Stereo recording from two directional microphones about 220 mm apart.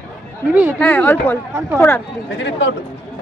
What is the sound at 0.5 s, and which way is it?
Speech, 5° right (ahead or behind).